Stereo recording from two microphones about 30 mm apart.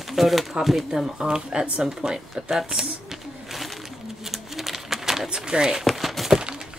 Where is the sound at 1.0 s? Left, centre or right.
Right.